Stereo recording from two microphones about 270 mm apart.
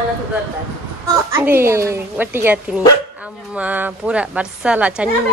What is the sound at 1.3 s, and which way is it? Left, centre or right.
A woman's voice, centre.